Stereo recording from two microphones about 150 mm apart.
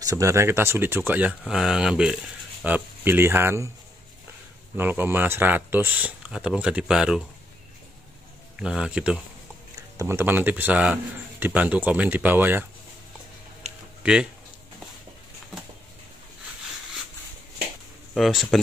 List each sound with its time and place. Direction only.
0.0 s a man's voice: 20° right (ahead or behind)
4.7 s a man's voice: 15° right (ahead or behind)
8.5 s speech: 5° right (ahead or behind)
9.9 s a man's voice: 15° right (ahead or behind)
14.0 s a man's voice: 10° right (ahead or behind)
18.1 s speech: centre (ahead or behind)